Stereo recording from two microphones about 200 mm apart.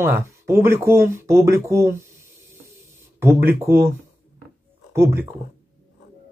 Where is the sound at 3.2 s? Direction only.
10° right (ahead or behind).